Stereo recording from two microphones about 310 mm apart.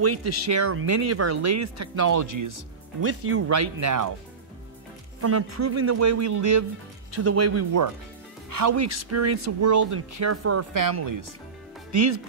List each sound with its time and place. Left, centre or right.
0.0 s speech: right
3.0 s speech: right
3.5 s speech: right
5.2 s speech: right
7.2 s speech: right
8.5 s speech: right
10.1 s speech: right
10.7 s speech: right
11.9 s speech: right